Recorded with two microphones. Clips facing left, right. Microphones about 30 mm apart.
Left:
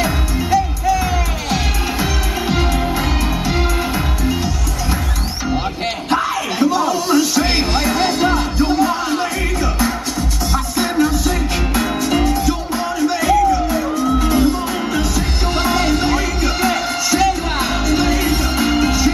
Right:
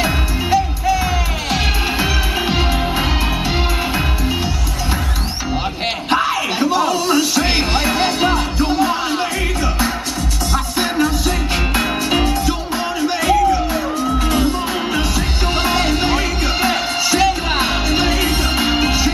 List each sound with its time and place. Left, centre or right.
0.0 s music: centre
6.0 s music: centre
11.7 s music: right